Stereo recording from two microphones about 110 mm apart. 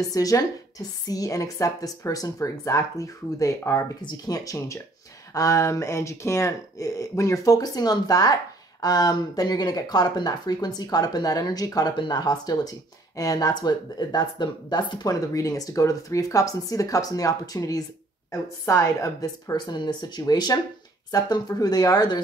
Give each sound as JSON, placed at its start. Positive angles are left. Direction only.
{"t": 0.1, "sound": "speech", "side_deg": 35}